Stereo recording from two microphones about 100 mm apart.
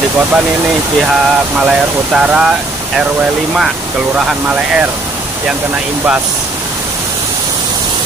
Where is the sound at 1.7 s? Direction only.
10° right (ahead or behind).